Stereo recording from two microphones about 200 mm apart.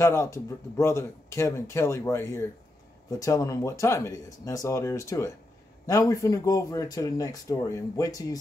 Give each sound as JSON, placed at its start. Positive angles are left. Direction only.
{"t": 0.0, "sound": "speech", "side_deg": 15}